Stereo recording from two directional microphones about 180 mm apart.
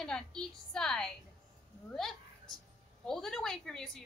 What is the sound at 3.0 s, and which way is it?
Speech, centre (ahead or behind).